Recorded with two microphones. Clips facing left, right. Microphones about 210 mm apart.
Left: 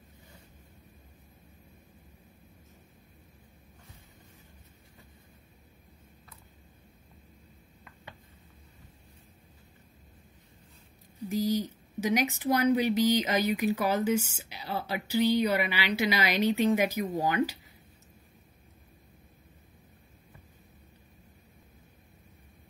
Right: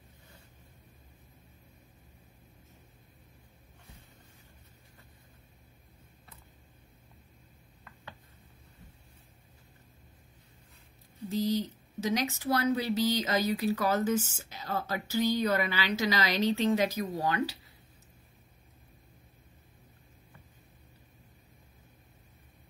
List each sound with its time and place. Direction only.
11.2 s speech: 15° left (ahead or behind)